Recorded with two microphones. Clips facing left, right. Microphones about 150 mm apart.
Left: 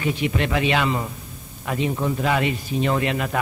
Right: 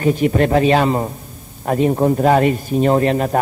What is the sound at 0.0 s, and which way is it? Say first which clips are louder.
A man's voice: right 8 dB; 45° right (ahead or behind).